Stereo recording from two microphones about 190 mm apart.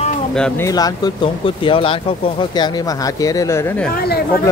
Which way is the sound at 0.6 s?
20° left (ahead or behind).